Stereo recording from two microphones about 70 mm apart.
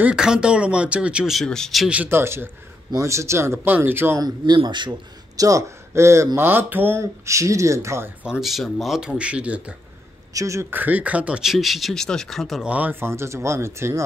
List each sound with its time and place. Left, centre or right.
0.0 s speech: centre
1.3 s speech: centre
2.0 s speech: right
3.5 s speech: right
4.2 s speech: right
5.3 s speech: right
7.0 s speech: right
8.4 s speech: centre
9.2 s speech: centre
10.3 s speech: right
10.7 s speech: right
11.4 s speech: centre
12.6 s speech: right
13.0 s speech: right